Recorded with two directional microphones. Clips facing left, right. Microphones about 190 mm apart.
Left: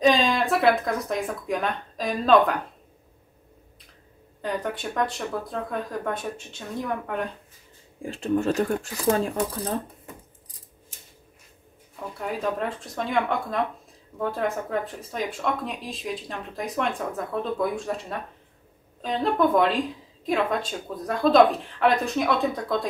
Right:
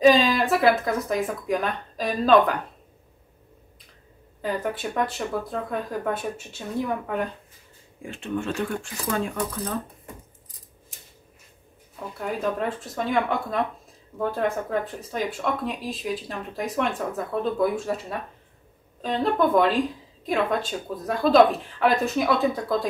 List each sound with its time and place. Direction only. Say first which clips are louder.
0.0 s speech: right 3 dB; centre (ahead or behind)
4.4 s speech: right 1 dB; 5° right (ahead or behind)
8.0 s speech: left 5 dB; 35° left (ahead or behind)
12.2 s speech: right 1 dB; centre (ahead or behind)
18.9 s speech: right 1 dB; centre (ahead or behind)